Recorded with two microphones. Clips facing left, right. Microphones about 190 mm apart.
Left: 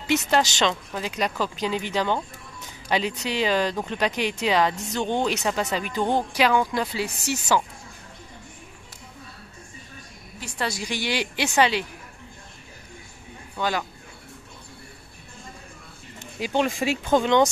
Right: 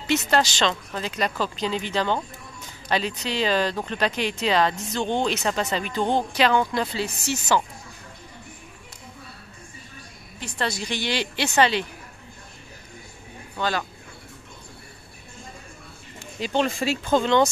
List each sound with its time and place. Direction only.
0.1 s speech: 15° left (ahead or behind)
10.4 s speech: 10° left (ahead or behind)
13.6 s speech: 15° left (ahead or behind)
16.2 s speech: 10° left (ahead or behind)